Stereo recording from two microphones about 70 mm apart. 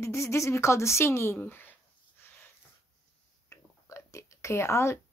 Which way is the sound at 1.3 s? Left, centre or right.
Left.